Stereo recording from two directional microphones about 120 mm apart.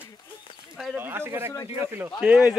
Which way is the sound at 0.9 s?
20° right (ahead or behind).